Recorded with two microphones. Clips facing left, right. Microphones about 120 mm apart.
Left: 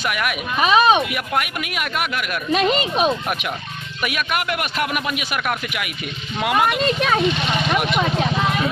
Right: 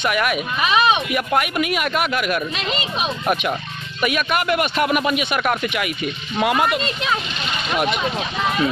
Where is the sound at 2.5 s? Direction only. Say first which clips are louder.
Left 7 dB; 45° left (ahead or behind).